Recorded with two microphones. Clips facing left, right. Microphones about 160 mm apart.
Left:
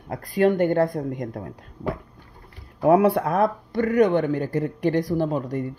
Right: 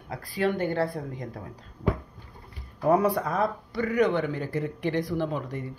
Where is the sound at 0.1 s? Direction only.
45° left (ahead or behind).